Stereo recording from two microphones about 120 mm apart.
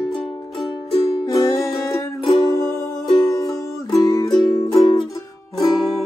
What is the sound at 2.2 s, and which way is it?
Music, 35° left (ahead or behind).